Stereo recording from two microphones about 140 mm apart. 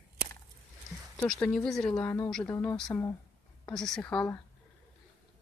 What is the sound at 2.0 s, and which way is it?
Speech, 15° left (ahead or behind).